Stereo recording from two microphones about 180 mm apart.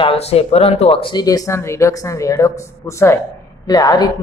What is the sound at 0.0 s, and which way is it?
Speech, 35° left (ahead or behind).